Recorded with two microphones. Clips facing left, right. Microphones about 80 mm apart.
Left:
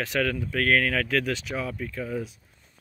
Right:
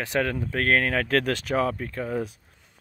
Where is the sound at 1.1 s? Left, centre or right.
Right.